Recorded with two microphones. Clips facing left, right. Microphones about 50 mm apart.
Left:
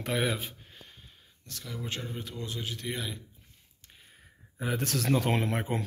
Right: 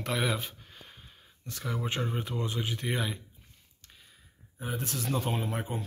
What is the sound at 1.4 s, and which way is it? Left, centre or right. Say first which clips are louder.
Speech: right 5 dB; right.